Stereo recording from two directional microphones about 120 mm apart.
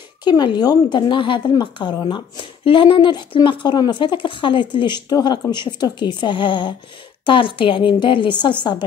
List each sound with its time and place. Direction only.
0.2 s a woman's voice: 40° left (ahead or behind)